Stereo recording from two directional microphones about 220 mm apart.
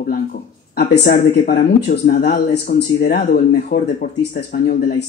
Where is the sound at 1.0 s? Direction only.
40° left (ahead or behind).